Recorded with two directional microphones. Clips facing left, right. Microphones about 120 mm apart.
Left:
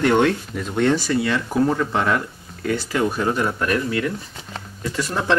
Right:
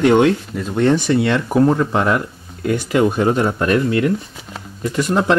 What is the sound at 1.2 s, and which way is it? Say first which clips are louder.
Speech: right 5 dB; 60° right (ahead or behind).